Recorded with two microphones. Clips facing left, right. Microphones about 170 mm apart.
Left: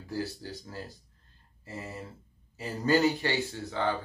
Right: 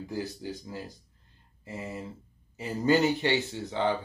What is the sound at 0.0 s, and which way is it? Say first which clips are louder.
Speech: right 1 dB; 15° right (ahead or behind).